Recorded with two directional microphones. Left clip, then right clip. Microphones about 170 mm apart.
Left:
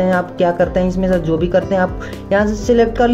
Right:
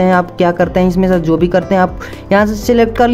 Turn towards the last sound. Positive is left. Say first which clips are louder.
# right 2 dB
turn(degrees=-30)  # may be behind; listen again after turning